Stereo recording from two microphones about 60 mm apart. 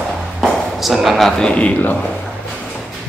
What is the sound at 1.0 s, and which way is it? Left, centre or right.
Speech, centre.